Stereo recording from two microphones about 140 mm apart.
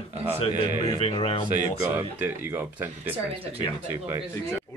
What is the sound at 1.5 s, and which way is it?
Speech, 15° right (ahead or behind).